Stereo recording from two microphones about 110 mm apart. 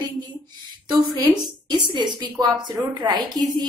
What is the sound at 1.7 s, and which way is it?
A woman's voice, 40° right (ahead or behind).